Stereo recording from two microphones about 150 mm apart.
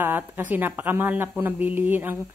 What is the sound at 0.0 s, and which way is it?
A woman's voice, 10° right (ahead or behind).